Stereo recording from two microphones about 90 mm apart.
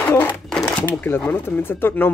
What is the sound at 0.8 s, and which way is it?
Speech, 25° left (ahead or behind).